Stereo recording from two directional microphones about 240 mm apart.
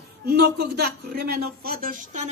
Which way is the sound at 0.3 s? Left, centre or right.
Right.